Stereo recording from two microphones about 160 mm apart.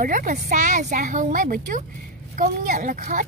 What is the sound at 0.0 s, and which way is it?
A child's voice, 55° right (ahead or behind).